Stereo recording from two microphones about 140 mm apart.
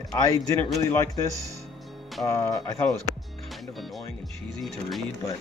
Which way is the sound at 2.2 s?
20° left (ahead or behind).